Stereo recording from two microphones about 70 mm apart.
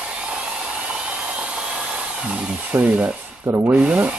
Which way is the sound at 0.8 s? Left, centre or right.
Centre.